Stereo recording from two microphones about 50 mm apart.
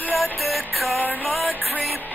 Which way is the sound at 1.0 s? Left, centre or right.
Left.